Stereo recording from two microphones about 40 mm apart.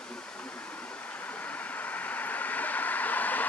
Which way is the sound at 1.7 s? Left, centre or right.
Left.